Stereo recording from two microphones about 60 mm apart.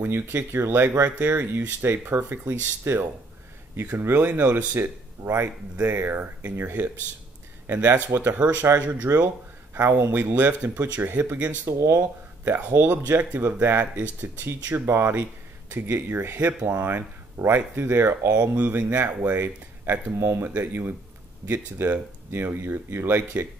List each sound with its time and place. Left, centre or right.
0.0 s speech: right
1.0 s speech: right
4.8 s speech: right
8.1 s speech: right
8.4 s speech: right
9.8 s speech: right
11.3 s speech: right
11.6 s speech: right
12.0 s speech: right
16.3 s speech: right
20.2 s speech: right